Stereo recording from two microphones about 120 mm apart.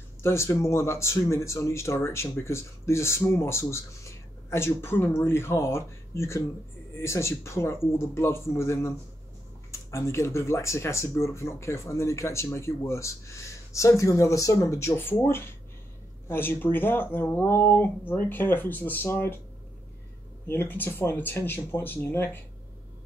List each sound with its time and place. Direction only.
0.2 s speech: 20° left (ahead or behind)
20.4 s speech: 15° left (ahead or behind)